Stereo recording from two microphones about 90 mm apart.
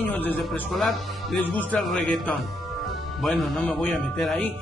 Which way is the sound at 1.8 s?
Centre (ahead or behind).